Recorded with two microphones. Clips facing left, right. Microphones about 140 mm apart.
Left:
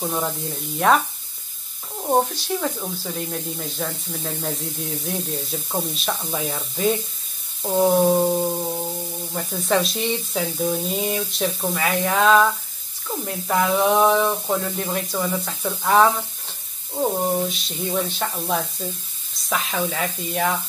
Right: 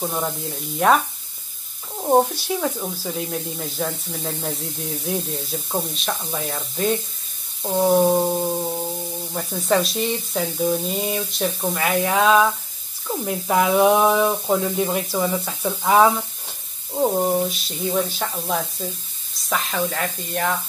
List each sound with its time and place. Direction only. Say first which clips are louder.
0.0 s speech: even; centre (ahead or behind)